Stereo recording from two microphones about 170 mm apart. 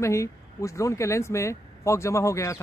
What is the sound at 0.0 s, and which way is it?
Speech, 15° left (ahead or behind).